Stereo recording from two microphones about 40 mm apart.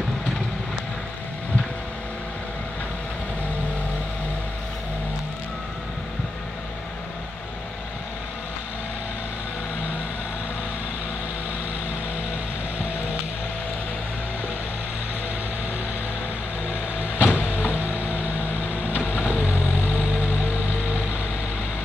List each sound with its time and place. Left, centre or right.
17.0 s vehicle: right